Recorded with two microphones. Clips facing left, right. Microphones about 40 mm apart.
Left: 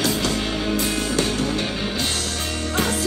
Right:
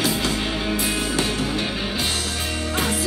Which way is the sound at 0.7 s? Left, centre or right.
Centre.